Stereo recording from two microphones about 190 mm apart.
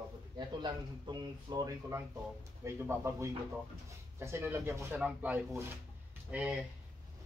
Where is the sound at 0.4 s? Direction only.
20° right (ahead or behind); by 6.6 s 5° right (ahead or behind).